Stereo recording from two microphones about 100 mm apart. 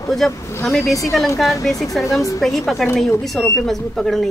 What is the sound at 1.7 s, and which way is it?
Speech, 35° left (ahead or behind).